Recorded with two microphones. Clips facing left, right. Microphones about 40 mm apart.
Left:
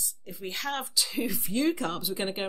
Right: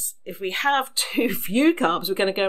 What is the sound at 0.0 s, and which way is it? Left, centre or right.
A woman's voice, right.